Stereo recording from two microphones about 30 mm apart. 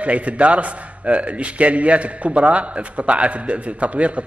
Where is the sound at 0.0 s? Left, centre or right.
Right.